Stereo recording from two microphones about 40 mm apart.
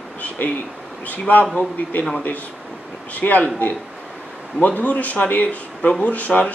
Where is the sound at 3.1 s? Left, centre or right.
Left.